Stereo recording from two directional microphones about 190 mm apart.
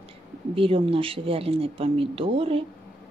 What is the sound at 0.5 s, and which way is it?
Speech, 30° right (ahead or behind).